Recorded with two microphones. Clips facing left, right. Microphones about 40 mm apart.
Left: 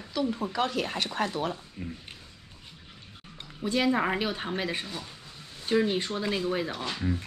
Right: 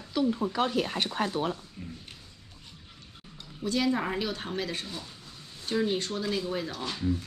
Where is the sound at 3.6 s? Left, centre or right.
Left.